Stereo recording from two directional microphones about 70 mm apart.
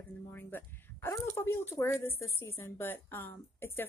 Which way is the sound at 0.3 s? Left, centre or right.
Left.